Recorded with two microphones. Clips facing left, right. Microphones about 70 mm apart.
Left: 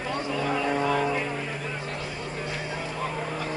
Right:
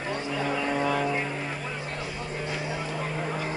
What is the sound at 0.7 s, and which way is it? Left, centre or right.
Foghorn, centre.